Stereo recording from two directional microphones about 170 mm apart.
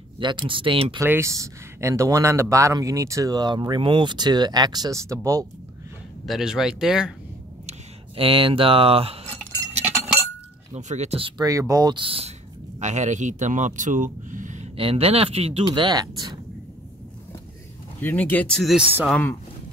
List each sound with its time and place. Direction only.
0.2 s speech: 30° right (ahead or behind)
0.9 s speech: 15° right (ahead or behind)
6.2 s speech: centre (ahead or behind)
8.2 s speech: 30° right (ahead or behind)
10.7 s speech: 45° right (ahead or behind)
14.8 s speech: 35° right (ahead or behind)
18.0 s speech: 10° left (ahead or behind)